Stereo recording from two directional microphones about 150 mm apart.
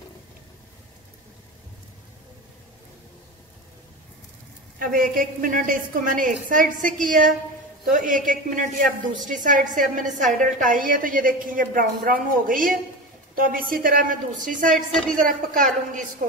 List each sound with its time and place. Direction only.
4.7 s a woman's voice: 70° right (ahead or behind)
14.9 s a woman's voice: 5° left (ahead or behind)
15.2 s a woman's voice: 65° right (ahead or behind)